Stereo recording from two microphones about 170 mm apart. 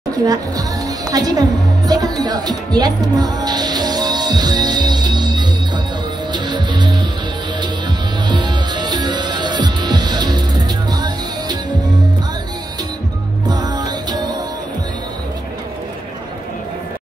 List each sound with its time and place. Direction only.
0.3 s a woman's voice: 20° right (ahead or behind)
6.3 s music: 25° right (ahead or behind)
8.3 s music: 25° right (ahead or behind)
13.5 s music: 25° right (ahead or behind)